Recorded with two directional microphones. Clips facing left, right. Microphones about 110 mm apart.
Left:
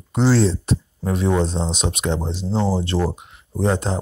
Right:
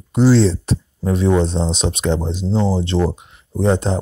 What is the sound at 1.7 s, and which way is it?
Speech, 30° right (ahead or behind).